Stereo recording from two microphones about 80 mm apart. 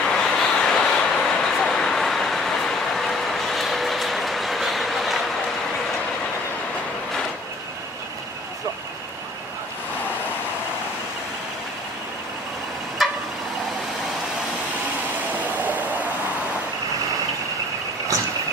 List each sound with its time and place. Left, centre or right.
0.1 s vehicle: centre
13.0 s a sound: centre
15.5 s vehicle: right